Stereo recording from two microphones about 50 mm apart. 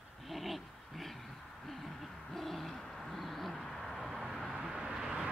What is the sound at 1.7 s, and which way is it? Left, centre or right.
Owl, centre.